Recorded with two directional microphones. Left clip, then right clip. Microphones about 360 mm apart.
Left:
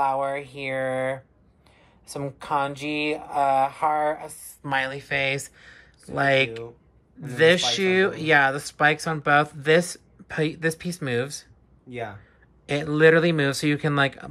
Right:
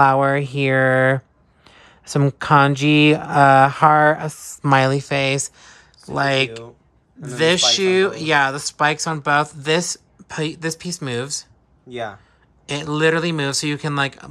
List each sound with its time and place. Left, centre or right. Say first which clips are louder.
0.0 s speech: right 9 dB; right
1.7 s a sound: right 11 dB; centre
2.7 s speech: right 12 dB; right; by 11.4 s centre
12.6 s speech: left 1 dB; centre